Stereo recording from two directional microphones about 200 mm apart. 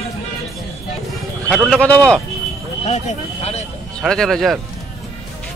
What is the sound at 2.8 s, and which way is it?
Speech, 35° left (ahead or behind).